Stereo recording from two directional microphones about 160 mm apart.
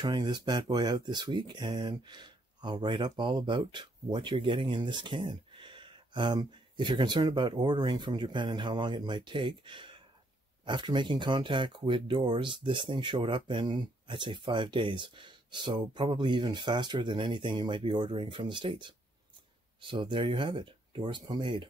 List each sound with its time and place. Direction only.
0.0 s speech: 25° right (ahead or behind)